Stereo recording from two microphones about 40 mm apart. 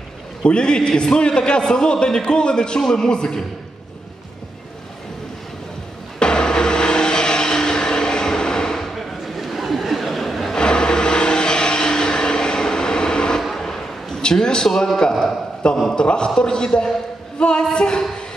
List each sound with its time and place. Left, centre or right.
0.4 s a man's voice: left
6.1 s vehicle: centre
8.8 s chatter: centre
10.5 s vehicle: centre
13.4 s a sound: centre
14.4 s a man's voice: centre